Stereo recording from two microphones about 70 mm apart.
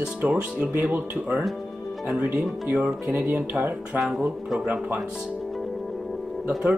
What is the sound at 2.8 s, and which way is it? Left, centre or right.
Speech, right.